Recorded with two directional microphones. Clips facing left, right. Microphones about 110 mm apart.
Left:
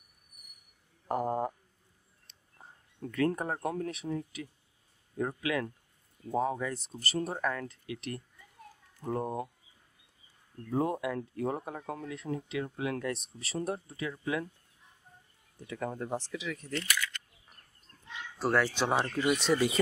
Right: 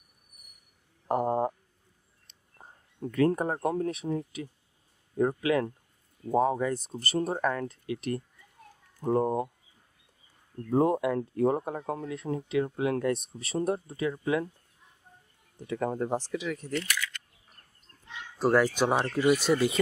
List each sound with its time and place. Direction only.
1.0 s a sound: 25° right (ahead or behind)
2.6 s speech: 25° right (ahead or behind)
10.7 s speech: 35° right (ahead or behind)
15.8 s speech: 40° right (ahead or behind)
16.7 s camera: centre (ahead or behind)
18.4 s speech: 15° right (ahead or behind)